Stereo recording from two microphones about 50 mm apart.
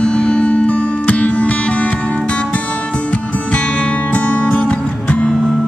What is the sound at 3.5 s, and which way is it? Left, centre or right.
Music, left.